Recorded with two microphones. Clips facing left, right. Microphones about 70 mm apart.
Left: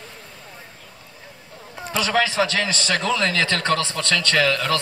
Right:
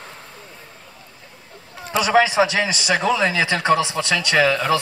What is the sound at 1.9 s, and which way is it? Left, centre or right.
A man's voice, centre.